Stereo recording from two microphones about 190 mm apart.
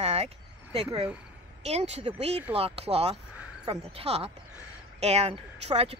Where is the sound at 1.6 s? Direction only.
35° right (ahead or behind).